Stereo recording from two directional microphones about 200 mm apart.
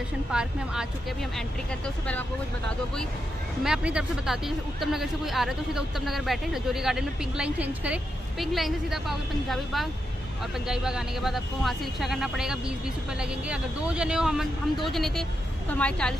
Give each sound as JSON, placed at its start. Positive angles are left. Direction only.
{"t": 0.3, "sound": "speech", "side_deg": -5}
{"t": 3.6, "sound": "speech", "side_deg": -5}